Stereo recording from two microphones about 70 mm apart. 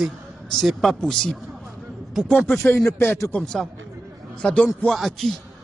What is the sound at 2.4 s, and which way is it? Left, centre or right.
Speech, left.